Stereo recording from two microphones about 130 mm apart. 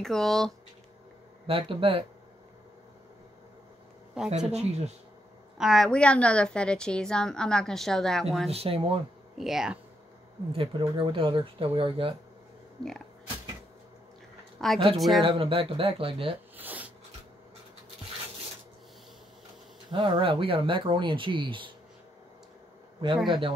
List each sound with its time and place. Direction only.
0.0 s a woman's voice: 5° left (ahead or behind)
1.5 s speech: 45° right (ahead or behind)
4.2 s a woman's voice: 5° right (ahead or behind)
4.5 s speech: 55° right (ahead or behind)
5.6 s a woman's voice: centre (ahead or behind)
8.5 s speech: 50° right (ahead or behind)
9.4 s a woman's voice: 5° right (ahead or behind)
10.5 s speech: 45° right (ahead or behind)
14.6 s a woman's voice: centre (ahead or behind)
15.2 s speech: 45° right (ahead or behind)
16.5 s a sound: 15° right (ahead or behind)
19.9 s speech: 40° right (ahead or behind)
23.0 s speech: 40° right (ahead or behind)